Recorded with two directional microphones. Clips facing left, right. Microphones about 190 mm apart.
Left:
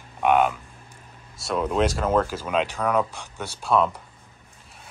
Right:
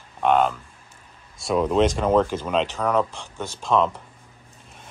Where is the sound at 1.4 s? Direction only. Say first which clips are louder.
Right 3 dB; centre (ahead or behind).